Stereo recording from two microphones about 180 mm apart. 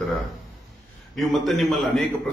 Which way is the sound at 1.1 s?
Centre (ahead or behind).